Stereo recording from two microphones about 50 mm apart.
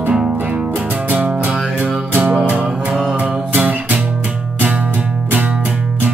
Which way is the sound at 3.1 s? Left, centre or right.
Right.